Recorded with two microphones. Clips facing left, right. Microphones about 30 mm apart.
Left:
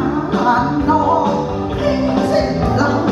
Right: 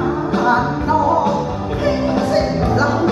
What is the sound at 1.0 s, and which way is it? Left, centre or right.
Music, left.